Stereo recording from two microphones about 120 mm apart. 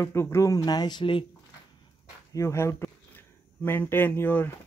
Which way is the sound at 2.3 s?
25° left (ahead or behind).